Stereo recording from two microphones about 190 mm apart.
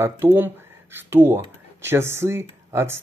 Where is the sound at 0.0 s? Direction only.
10° right (ahead or behind).